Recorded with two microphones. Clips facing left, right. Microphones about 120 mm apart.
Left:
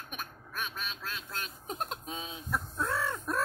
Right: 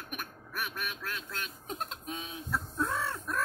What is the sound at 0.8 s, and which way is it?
Quack, 25° left (ahead or behind).